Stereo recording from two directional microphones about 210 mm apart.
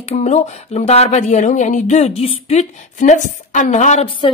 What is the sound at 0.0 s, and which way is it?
A woman's voice, 30° left (ahead or behind).